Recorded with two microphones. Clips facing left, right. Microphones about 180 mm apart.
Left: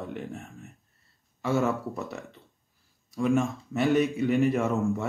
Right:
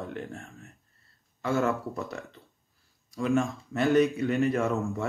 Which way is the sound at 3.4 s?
Centre (ahead or behind).